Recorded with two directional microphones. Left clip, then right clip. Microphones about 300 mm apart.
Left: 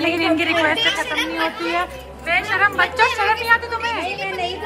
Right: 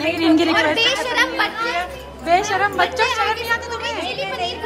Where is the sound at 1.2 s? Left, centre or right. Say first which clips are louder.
Right 3 dB; right.